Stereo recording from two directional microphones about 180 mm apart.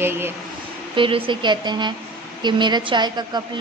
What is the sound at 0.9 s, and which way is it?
A woman's voice, 30° right (ahead or behind).